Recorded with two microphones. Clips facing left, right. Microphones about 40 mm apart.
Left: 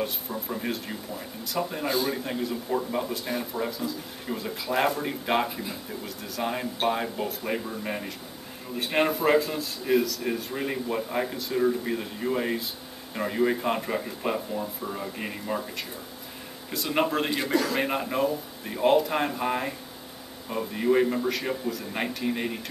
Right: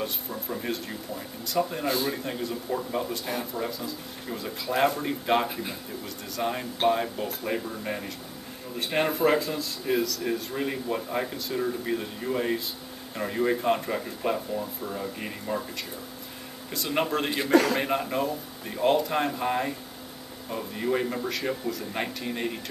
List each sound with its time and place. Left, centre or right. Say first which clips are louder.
0.0 s a sound: left 2 dB; centre
1.5 s a man's voice: right 1 dB; centre
16.7 s a man's voice: left 1 dB; centre
17.5 s a man's voice: right 9 dB; right
17.7 s a man's voice: even; centre